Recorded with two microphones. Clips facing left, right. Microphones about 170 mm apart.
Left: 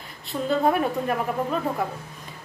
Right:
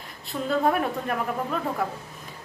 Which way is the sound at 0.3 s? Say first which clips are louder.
Left 2 dB; 5° left (ahead or behind).